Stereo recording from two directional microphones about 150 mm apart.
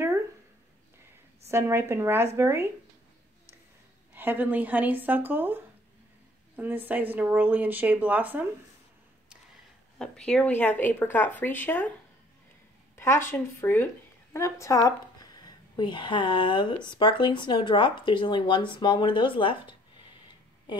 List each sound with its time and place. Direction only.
1.5 s speech: 15° right (ahead or behind)
4.1 s speech: 15° right (ahead or behind)
9.9 s speech: 5° left (ahead or behind)
12.9 s a woman's voice: 15° left (ahead or behind); by 19.7 s 35° left (ahead or behind)